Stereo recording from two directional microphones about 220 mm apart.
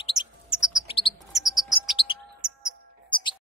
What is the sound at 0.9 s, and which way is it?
Chirp, 25° left (ahead or behind).